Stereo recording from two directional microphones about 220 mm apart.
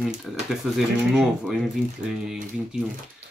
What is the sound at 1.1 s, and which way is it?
Speech, centre (ahead or behind).